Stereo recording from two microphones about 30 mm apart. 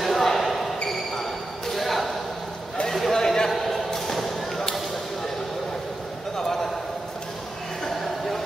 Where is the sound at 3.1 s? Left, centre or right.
Centre.